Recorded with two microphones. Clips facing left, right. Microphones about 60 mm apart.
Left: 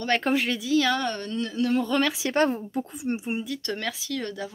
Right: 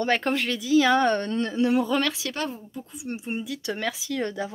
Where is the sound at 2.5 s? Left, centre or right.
Left.